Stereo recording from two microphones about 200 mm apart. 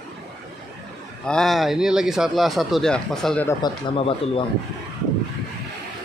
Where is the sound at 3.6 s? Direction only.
25° left (ahead or behind).